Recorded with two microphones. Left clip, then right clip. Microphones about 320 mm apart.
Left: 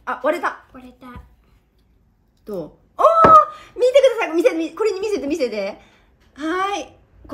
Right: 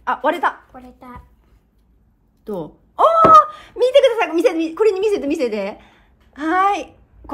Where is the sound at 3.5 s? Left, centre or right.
Right.